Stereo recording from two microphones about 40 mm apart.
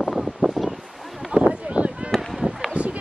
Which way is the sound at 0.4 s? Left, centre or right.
Right.